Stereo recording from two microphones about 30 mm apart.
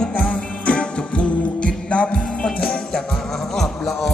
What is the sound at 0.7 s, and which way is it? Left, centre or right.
Music, left.